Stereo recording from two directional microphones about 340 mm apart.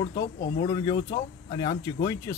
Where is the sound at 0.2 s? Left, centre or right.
Left.